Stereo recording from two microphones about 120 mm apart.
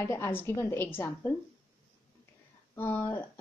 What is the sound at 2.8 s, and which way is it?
Speech, 15° left (ahead or behind).